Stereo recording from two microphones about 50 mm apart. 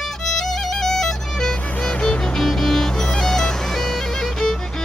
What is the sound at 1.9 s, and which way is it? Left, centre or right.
Music, left.